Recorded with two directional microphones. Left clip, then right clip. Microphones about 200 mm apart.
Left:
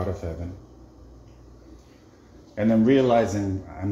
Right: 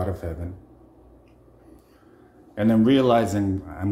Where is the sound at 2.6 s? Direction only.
35° right (ahead or behind).